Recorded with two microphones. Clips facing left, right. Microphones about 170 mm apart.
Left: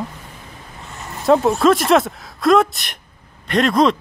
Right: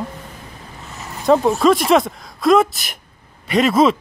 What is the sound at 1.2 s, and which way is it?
Speech, centre (ahead or behind).